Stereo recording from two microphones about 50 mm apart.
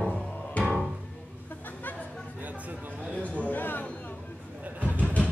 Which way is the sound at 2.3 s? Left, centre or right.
Right.